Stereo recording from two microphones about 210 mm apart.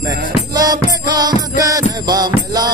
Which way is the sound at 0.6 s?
20° right (ahead or behind).